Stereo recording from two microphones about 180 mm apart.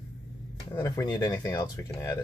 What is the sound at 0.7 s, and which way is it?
Speech, 20° left (ahead or behind).